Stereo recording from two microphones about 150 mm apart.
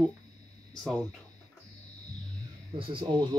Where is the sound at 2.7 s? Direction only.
35° right (ahead or behind).